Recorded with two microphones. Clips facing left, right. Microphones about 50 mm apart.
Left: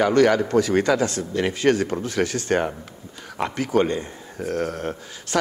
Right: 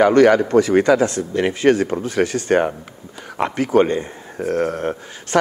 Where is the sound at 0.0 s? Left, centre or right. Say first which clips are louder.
Right 5 dB; centre.